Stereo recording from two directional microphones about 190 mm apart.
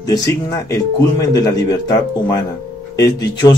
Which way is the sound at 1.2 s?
20° left (ahead or behind).